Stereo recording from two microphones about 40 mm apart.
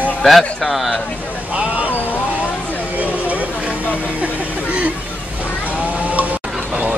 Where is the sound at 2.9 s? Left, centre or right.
Right.